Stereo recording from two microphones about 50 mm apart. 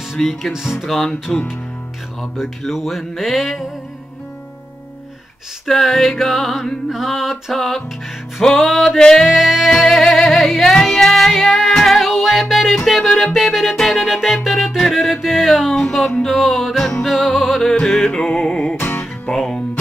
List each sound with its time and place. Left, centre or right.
0.1 s music: centre
0.5 s speech: centre
0.7 s music: centre
2.3 s music: centre
5.7 s music: centre
9.2 s music: centre
18.8 s music: left
19.3 s speech: centre